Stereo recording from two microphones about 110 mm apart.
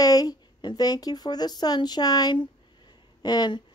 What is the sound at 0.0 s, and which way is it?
A woman's voice, 35° left (ahead or behind).